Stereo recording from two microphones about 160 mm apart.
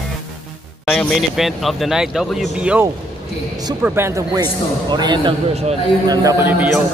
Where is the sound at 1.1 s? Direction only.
Centre (ahead or behind).